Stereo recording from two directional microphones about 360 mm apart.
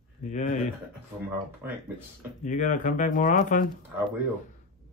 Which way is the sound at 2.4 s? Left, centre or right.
Left.